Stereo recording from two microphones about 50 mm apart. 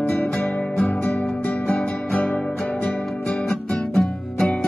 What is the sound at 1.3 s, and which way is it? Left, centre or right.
Music, left.